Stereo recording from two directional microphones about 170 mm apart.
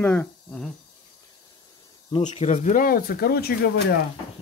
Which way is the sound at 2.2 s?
45° left (ahead or behind).